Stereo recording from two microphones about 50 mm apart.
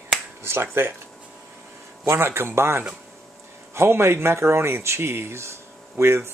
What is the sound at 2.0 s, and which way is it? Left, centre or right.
Speech, right.